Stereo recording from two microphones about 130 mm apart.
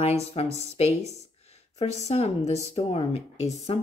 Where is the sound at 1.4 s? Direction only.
55° left (ahead or behind).